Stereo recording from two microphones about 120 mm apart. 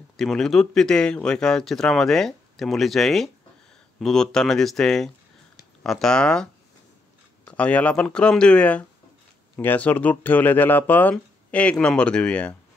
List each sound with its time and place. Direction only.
0.2 s speech: 5° left (ahead or behind)